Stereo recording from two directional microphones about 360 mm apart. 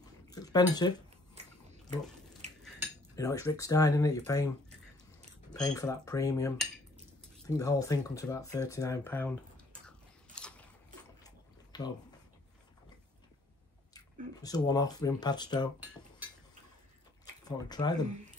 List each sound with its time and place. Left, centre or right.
0.3 s speech: centre
2.4 s cutlery: centre
3.2 s speech: centre
5.5 s speech: centre
9.8 s biting: centre
11.2 s a sound: centre
13.9 s speech: centre
17.5 s speech: centre